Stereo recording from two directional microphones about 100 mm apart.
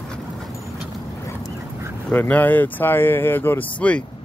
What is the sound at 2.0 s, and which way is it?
Speech, 15° left (ahead or behind).